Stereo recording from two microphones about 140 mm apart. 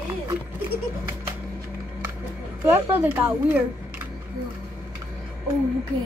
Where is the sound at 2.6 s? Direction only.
15° right (ahead or behind).